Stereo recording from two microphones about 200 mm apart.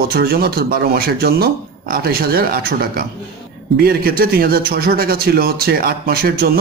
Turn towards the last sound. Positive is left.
turn(degrees=-50)  # may be behind; listen again after turning